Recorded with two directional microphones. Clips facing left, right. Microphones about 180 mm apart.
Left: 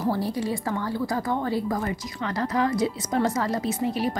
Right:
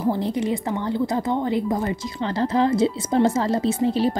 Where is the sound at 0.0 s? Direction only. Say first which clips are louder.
Right 3 dB; 20° right (ahead or behind).